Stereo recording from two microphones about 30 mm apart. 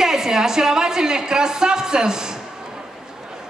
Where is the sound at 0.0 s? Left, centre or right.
Centre.